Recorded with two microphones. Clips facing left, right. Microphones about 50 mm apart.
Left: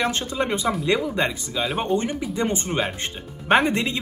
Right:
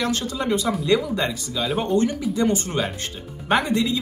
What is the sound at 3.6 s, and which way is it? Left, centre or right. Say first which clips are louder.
Speech: even; left.